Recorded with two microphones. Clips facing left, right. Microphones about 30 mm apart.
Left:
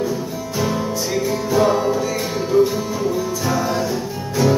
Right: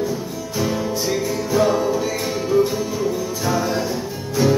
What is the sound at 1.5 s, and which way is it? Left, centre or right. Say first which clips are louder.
Music: left 1 dB; centre.